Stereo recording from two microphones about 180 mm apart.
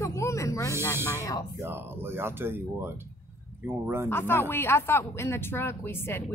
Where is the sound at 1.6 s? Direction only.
15° right (ahead or behind).